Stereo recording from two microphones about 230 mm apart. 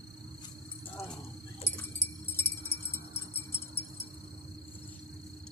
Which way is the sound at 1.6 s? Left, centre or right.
Centre.